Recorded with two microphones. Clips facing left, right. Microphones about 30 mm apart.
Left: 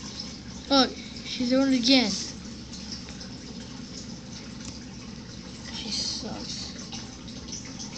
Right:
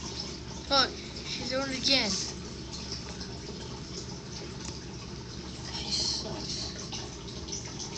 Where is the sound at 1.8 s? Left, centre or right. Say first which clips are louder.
Left 6 dB; left.